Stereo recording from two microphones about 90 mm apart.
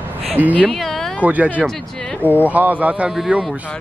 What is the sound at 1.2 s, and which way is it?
Speech, 15° right (ahead or behind).